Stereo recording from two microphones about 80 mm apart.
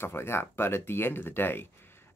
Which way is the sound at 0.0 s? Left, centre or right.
Left.